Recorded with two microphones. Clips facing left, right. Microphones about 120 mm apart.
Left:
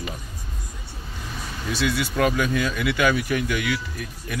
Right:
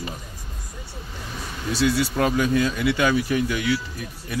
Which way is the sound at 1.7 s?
35° right (ahead or behind).